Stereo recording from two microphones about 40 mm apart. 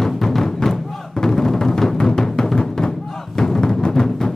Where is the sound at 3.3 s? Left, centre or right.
Centre.